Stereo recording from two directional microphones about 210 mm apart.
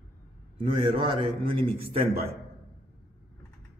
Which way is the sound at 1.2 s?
25° right (ahead or behind).